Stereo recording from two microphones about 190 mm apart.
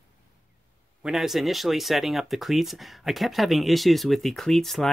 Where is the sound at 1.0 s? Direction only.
Centre (ahead or behind).